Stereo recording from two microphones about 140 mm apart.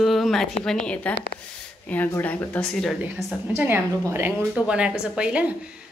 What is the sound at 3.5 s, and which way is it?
A woman's voice, 15° right (ahead or behind).